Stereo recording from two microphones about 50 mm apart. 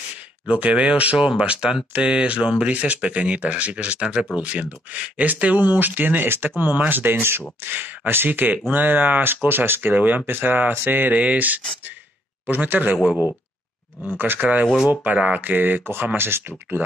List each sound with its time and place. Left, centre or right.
0.5 s speech: right
7.7 s speech: right
14.0 s speech: right